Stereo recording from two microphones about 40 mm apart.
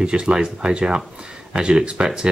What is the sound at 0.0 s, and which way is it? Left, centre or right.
Speech, right.